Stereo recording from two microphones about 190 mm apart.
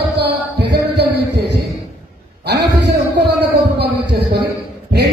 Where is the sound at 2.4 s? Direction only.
60° right (ahead or behind).